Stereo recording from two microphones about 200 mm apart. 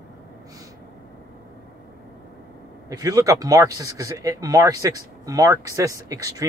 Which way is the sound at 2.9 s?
20° right (ahead or behind).